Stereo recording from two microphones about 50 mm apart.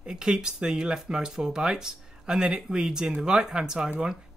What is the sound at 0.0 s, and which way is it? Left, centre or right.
Speech, centre.